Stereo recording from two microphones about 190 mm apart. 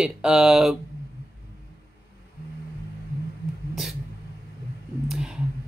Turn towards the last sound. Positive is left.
turn(degrees=0)  # may be behind; listen again after turning